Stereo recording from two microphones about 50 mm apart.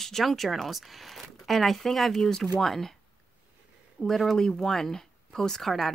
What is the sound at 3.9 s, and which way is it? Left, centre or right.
Speech, centre.